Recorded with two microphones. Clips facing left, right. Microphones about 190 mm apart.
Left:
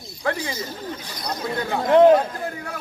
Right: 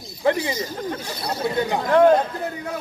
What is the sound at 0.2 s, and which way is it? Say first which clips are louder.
Speech: right 5 dB; 15° right (ahead or behind).